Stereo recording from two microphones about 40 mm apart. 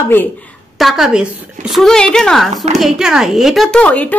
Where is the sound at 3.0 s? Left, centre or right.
Centre.